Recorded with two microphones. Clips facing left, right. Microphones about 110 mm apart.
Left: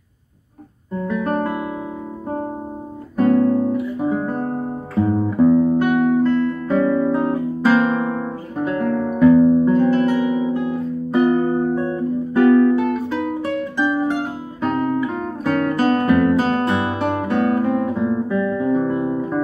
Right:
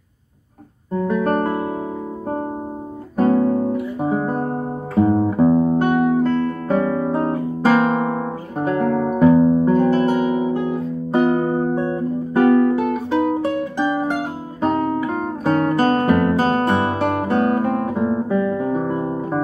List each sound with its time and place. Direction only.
0.9 s music: 35° right (ahead or behind)
3.2 s guitar: 25° right (ahead or behind)
4.1 s music: 25° right (ahead or behind)
6.9 s guitar: 30° right (ahead or behind)
10.6 s music: 30° right (ahead or behind)
15.4 s guitar: 30° right (ahead or behind)
18.6 s music: 35° right (ahead or behind)